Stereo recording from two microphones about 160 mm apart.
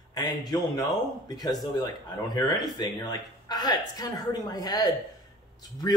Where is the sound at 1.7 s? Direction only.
25° left (ahead or behind).